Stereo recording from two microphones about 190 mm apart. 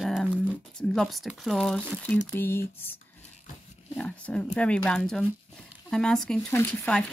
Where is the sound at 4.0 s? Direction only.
5° left (ahead or behind).